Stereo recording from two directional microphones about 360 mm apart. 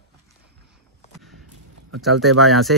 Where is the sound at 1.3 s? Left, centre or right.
Right.